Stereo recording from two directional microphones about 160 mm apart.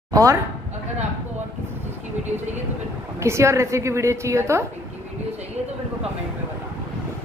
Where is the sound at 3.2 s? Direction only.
15° right (ahead or behind).